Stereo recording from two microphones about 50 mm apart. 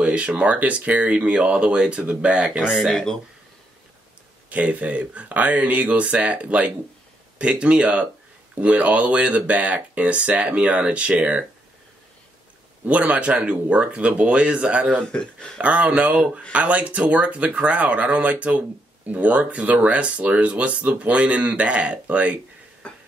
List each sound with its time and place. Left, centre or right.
0.0 s speech: right
2.7 s speech: centre
4.5 s speech: right
12.8 s speech: right
15.0 s speech: centre
15.6 s speech: right
22.8 s a sound: left